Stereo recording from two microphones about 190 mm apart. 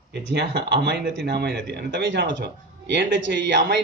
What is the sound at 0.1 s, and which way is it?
Speech, 60° right (ahead or behind).